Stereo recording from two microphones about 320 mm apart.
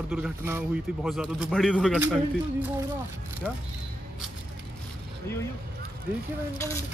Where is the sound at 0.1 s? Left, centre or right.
Centre.